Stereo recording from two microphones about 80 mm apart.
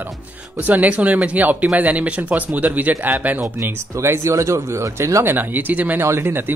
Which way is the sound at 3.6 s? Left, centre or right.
Right.